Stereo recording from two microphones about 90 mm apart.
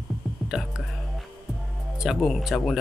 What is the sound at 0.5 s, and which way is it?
Speech, centre (ahead or behind).